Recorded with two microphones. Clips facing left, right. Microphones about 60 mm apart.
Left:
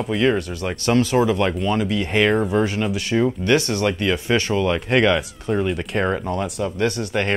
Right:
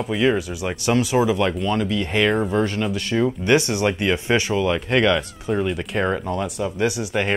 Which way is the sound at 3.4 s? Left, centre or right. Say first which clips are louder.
Even; centre.